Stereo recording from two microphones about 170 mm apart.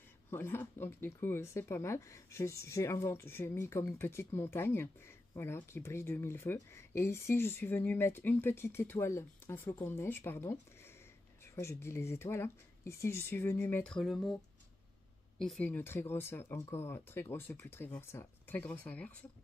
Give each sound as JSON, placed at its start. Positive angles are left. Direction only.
{"t": 0.3, "sound": "speech", "side_deg": 15}
{"t": 15.3, "sound": "speech", "side_deg": 5}